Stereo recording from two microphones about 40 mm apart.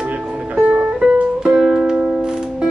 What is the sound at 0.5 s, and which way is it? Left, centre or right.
Music, right.